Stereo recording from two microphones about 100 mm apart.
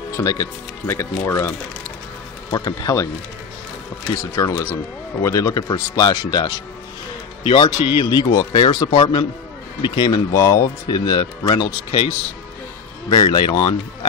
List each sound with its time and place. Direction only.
0.1 s speech: 35° left (ahead or behind)
2.5 s speech: 35° left (ahead or behind)
4.2 s speech: 30° left (ahead or behind)
5.7 s speech: 45° left (ahead or behind)
10.3 s speech: 30° left (ahead or behind); by 12.1 s 50° left (ahead or behind)
13.1 s speech: 45° left (ahead or behind)